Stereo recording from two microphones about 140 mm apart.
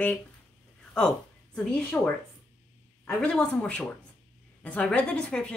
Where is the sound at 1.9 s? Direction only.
15° left (ahead or behind).